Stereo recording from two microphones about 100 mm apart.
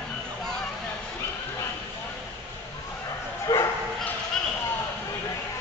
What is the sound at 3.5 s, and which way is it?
Bow-wow, 35° left (ahead or behind).